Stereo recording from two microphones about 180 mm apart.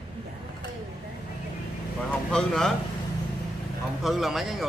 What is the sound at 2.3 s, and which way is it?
Speech, 5° left (ahead or behind).